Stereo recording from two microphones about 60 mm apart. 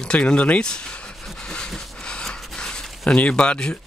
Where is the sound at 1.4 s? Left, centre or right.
Centre.